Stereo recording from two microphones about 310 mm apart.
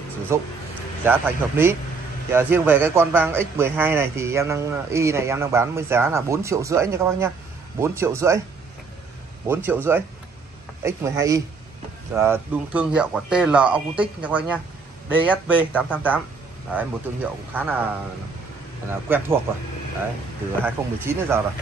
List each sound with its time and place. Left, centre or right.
0.3 s speech: centre
9.5 s speech: centre
18.9 s speech: centre
20.6 s speech: centre